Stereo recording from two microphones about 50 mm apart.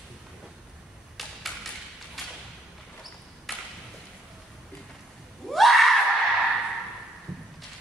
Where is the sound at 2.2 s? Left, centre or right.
Centre.